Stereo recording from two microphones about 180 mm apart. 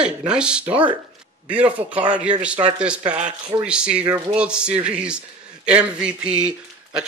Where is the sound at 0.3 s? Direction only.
5° right (ahead or behind).